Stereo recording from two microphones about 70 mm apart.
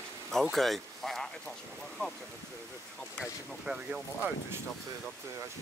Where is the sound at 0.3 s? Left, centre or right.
Centre.